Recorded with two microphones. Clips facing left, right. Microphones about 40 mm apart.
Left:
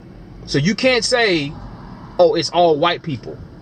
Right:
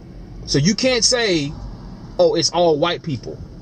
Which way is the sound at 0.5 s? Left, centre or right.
Centre.